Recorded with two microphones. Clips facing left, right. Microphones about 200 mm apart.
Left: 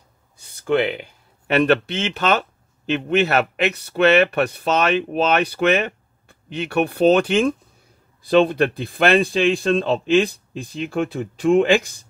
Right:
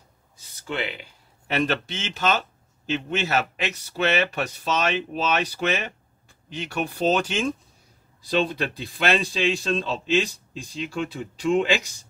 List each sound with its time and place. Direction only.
0.4 s speech: 55° left (ahead or behind)